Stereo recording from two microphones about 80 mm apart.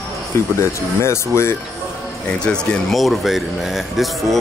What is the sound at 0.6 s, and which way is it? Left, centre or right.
Speech, left.